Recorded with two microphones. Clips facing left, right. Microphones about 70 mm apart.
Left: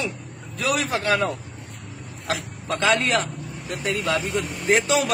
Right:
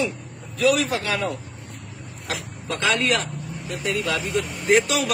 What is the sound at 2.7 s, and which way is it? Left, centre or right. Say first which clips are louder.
Speech: left 1 dB; left.